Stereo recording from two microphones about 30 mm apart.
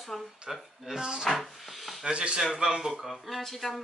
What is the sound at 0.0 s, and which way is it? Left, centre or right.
Speech, centre.